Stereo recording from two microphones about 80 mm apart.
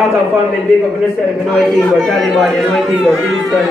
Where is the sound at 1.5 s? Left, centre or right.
Centre.